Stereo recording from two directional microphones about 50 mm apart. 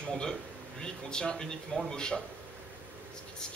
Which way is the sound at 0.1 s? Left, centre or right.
Centre.